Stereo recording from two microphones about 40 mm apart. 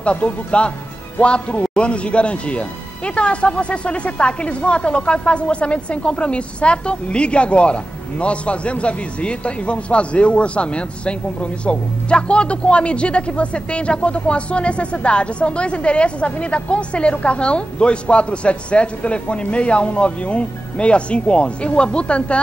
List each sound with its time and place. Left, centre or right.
0.0 s a man's voice: left